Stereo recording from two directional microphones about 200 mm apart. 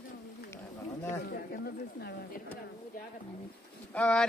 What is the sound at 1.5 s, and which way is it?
Speech, 55° left (ahead or behind).